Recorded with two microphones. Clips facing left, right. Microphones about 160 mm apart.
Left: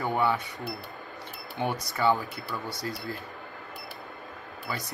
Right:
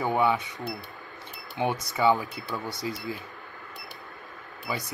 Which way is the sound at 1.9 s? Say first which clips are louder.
Right 2 dB; centre (ahead or behind).